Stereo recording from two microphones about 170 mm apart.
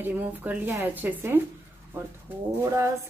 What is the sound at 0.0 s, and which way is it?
Speech, 10° right (ahead or behind).